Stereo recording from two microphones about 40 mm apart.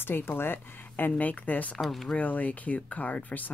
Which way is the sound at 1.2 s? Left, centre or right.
Left.